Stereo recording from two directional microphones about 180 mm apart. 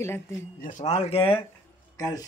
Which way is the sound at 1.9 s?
20° left (ahead or behind).